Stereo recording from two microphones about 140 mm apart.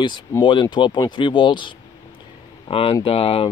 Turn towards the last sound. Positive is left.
turn(degrees=40)  # may be behind; listen again after turning